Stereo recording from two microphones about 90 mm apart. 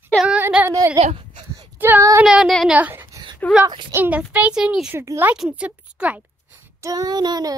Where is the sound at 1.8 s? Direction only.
20° right (ahead or behind).